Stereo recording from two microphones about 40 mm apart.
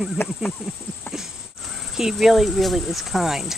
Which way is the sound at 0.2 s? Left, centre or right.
Left.